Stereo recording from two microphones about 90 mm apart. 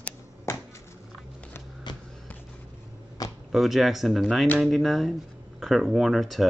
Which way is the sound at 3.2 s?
45° left (ahead or behind).